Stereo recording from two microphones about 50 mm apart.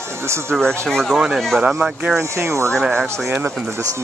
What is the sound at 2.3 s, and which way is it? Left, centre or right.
Speech, right.